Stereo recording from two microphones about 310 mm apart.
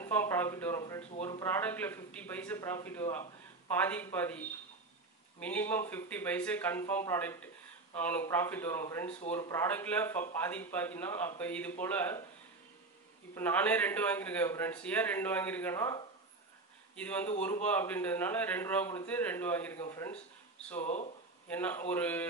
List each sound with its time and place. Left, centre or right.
0.0 s a man's voice: centre
13.3 s a man's voice: centre
20.8 s speech: left
21.5 s a man's voice: centre